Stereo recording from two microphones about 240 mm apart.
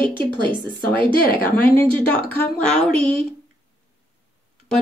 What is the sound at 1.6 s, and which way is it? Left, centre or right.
Speech, centre.